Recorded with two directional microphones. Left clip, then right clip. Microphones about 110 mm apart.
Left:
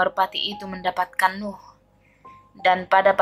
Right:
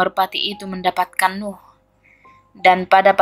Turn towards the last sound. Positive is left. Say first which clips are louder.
# right 5 dB
turn(degrees=-70)  # may be behind; listen again after turning